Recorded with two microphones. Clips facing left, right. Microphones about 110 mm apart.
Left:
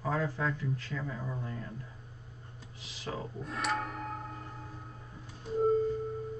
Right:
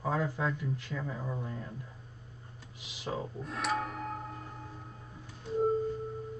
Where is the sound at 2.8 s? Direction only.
15° right (ahead or behind).